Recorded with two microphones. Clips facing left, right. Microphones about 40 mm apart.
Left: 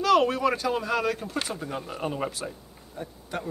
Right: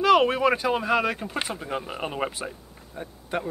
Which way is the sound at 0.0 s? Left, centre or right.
Right.